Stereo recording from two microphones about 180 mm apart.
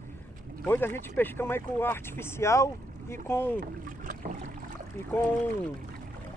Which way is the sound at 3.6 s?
45° right (ahead or behind).